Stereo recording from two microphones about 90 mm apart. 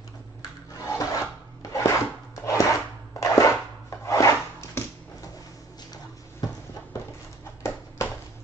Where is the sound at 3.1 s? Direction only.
35° left (ahead or behind).